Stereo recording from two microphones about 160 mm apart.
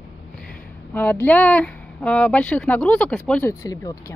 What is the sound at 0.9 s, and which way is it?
Speech, 10° left (ahead or behind).